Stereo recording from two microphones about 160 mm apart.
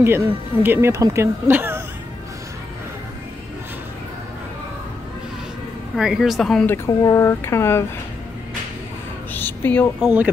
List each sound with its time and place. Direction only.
0.0 s speech: 15° right (ahead or behind)
5.9 s a woman's voice: centre (ahead or behind)
6.9 s speech: 20° left (ahead or behind)
9.3 s a sound: 10° left (ahead or behind)
10.0 s speech: 10° right (ahead or behind)